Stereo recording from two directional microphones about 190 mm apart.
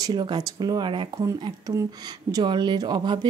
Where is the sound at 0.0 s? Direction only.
25° right (ahead or behind).